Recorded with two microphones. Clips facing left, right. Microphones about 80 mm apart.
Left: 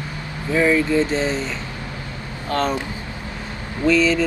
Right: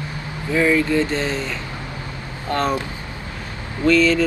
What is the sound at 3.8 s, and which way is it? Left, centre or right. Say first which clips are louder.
Speech: right 1 dB; left.